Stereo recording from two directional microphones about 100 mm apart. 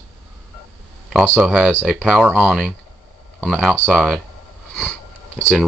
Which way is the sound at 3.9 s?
5° left (ahead or behind).